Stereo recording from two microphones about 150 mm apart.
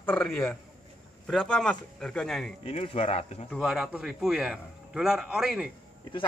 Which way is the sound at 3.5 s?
Centre (ahead or behind).